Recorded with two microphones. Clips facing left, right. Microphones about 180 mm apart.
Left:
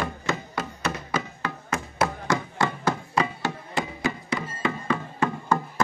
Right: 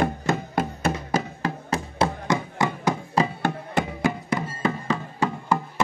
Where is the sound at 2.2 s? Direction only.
20° right (ahead or behind).